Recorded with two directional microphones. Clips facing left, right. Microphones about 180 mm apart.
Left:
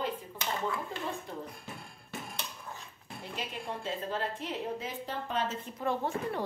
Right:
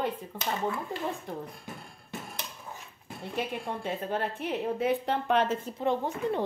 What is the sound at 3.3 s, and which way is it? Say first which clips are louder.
A woman's voice: right 6 dB; 55° right (ahead or behind).